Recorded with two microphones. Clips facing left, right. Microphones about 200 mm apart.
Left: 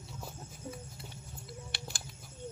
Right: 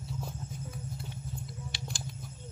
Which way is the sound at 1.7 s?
60° left (ahead or behind).